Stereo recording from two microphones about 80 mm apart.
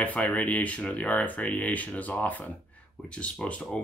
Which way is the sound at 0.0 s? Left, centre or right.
Centre.